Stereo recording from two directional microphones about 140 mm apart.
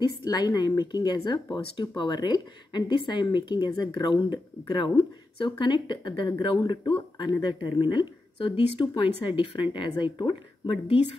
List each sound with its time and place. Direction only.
0.3 s speech: 30° left (ahead or behind)